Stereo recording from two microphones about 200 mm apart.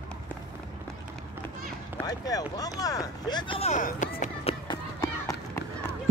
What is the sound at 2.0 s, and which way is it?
Speech, 20° left (ahead or behind).